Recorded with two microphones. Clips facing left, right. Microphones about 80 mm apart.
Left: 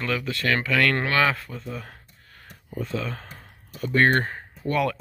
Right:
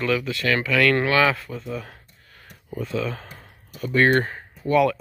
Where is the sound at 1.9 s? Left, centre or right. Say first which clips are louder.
Right 1 dB; left.